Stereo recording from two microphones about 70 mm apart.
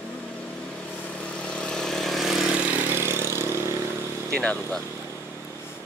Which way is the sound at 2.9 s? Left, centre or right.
Right.